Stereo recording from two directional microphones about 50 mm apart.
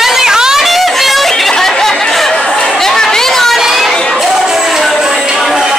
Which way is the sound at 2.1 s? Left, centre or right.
Centre.